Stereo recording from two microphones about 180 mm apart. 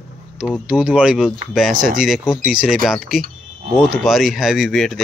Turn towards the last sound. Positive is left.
turn(degrees=0)  # may be behind; listen again after turning